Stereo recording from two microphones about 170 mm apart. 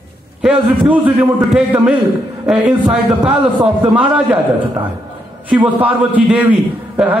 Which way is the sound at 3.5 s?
25° right (ahead or behind).